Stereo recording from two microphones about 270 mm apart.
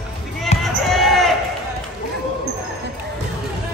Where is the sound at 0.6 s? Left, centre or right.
Centre.